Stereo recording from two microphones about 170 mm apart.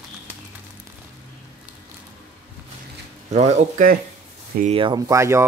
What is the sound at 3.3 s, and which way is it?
Speech, 40° right (ahead or behind).